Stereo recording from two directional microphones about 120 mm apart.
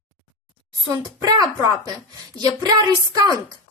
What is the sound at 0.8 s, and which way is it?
A woman's voice, 30° right (ahead or behind).